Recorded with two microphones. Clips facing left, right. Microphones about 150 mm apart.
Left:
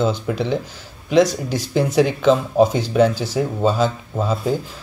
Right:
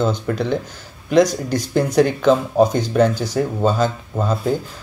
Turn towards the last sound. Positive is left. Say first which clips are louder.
# right 1 dB
turn(degrees=5)  # may be behind; listen again after turning